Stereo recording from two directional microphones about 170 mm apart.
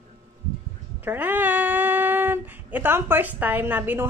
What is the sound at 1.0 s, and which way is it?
Speech, 10° right (ahead or behind).